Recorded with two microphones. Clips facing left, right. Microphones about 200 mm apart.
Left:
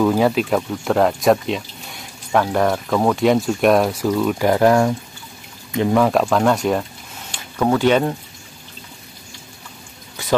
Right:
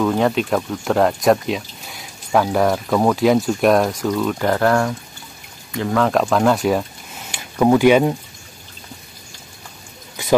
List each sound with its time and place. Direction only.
0.0 s speech: 5° left (ahead or behind)
6.0 s speech: centre (ahead or behind)